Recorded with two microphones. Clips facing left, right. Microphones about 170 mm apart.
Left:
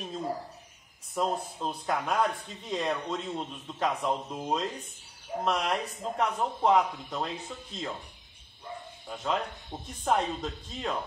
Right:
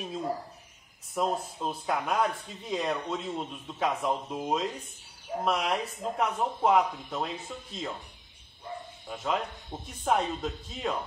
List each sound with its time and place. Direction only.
1.1 s speech: centre (ahead or behind)
9.0 s speech: 5° right (ahead or behind)